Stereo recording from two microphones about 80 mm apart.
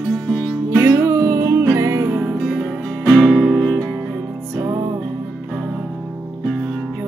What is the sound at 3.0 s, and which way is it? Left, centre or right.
Music, centre.